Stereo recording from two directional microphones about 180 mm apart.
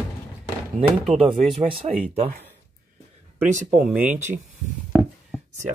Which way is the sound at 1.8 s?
30° right (ahead or behind).